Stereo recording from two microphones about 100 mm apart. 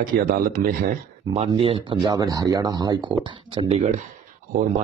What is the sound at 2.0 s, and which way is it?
Speech, 35° right (ahead or behind).